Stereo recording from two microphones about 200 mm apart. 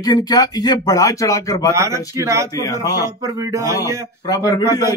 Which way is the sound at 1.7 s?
15° right (ahead or behind).